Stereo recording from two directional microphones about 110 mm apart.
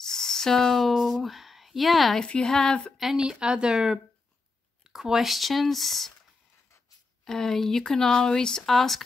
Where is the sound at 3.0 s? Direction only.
5° right (ahead or behind).